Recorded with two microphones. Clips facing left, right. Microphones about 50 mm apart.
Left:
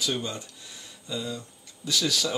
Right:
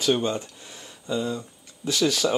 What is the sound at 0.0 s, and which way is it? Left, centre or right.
Speech, right.